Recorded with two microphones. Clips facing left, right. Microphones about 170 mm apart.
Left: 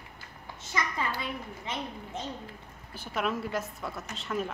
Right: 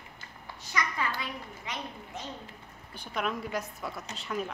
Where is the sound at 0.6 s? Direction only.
25° left (ahead or behind).